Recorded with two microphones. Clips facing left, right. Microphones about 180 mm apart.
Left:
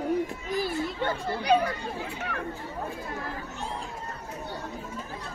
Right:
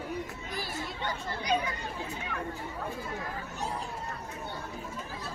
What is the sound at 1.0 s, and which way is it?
Chatter, 60° left (ahead or behind).